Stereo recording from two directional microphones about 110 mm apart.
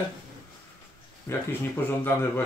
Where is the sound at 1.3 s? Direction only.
20° left (ahead or behind).